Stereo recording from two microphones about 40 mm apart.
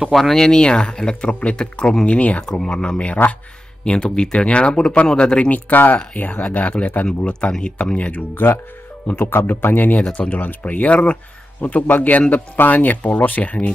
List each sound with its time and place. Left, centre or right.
0.1 s speech: centre
2.0 s a man's voice: left
2.4 s speech: centre
3.2 s speech: left
3.8 s speech: left
5.5 s speech: left
6.4 s a man's voice: left
7.1 s a man's voice: left
8.4 s speech: left
9.1 s speech: left
10.2 s speech: centre
10.7 s a man's voice: left